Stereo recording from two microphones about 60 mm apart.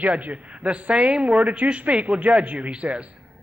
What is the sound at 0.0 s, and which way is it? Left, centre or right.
A man's voice, right.